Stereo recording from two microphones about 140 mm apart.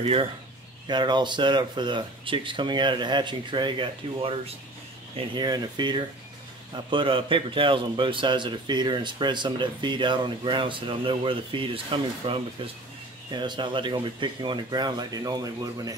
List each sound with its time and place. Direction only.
0.0 s speech: 40° right (ahead or behind)
0.8 s speech: 30° right (ahead or behind)